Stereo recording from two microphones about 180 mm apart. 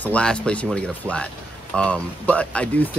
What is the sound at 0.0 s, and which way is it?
Speech, 5° left (ahead or behind).